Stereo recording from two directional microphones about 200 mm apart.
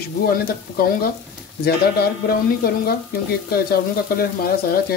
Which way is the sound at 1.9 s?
50° left (ahead or behind).